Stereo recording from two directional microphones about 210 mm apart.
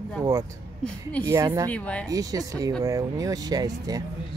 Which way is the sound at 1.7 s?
5° left (ahead or behind).